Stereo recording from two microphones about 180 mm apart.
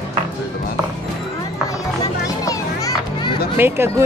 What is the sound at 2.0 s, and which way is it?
Children playing, 20° left (ahead or behind).